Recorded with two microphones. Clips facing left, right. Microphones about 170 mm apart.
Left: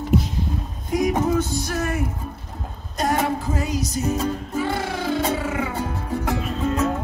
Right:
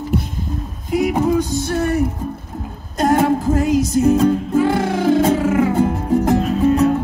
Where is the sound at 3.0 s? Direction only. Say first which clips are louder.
Right 7 dB; 50° right (ahead or behind).